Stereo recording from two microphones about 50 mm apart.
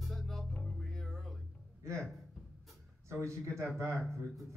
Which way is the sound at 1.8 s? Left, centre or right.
Right.